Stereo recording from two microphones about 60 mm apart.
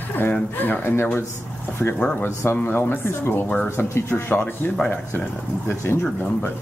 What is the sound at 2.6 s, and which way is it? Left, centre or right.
Speech, left.